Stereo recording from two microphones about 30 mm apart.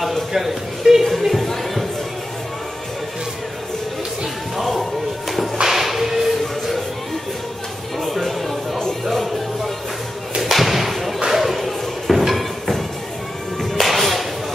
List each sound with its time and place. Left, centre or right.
0.3 s a man's voice: centre
1.3 s music: centre
4.6 s a sound: centre
5.6 s music: centre
8.0 s music: centre
10.4 s thump: centre
11.2 s music: centre
11.6 s a sound: centre
13.6 s music: centre